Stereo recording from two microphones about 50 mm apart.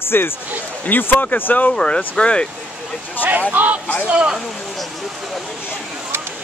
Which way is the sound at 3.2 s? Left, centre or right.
Right.